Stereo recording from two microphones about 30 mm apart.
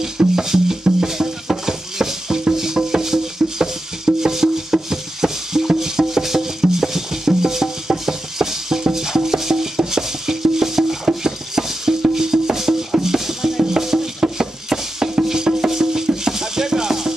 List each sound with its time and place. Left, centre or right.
0.4 s music: centre
11.1 s cutlery: centre
12.2 s music: centre